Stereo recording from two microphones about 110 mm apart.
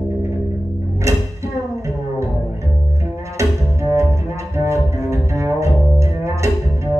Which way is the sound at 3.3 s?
25° right (ahead or behind).